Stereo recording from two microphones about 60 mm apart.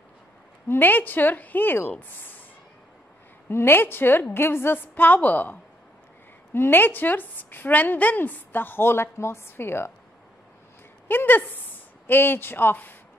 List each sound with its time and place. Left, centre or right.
0.7 s a woman's voice: left
3.4 s a woman's voice: left
11.1 s speech: left